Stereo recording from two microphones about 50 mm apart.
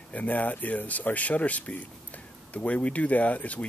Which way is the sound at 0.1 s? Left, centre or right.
Left.